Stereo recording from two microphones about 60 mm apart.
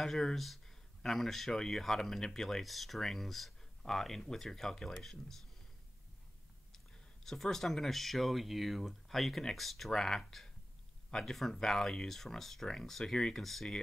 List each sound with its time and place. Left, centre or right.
0.0 s speech: centre
6.7 s speech: centre